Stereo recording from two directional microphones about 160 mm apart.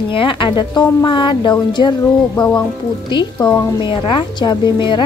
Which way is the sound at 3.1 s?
30° left (ahead or behind).